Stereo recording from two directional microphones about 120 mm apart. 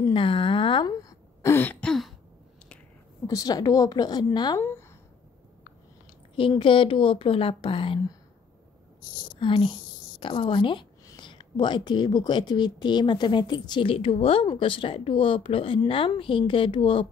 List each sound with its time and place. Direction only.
0.1 s throat clearing: 50° left (ahead or behind); by 2.1 s 5° left (ahead or behind)
3.3 s a woman's voice: 30° left (ahead or behind)
4.6 s speech: 20° left (ahead or behind)
6.3 s speech: 45° left (ahead or behind)
9.4 s a woman's voice: 45° left (ahead or behind)